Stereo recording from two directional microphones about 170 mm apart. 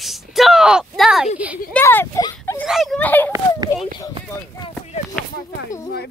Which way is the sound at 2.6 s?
Centre (ahead or behind).